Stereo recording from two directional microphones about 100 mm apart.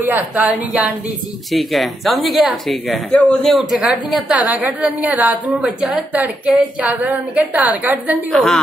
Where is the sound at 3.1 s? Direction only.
10° left (ahead or behind).